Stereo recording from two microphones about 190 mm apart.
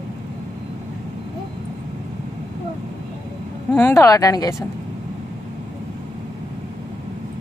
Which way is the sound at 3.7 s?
10° left (ahead or behind).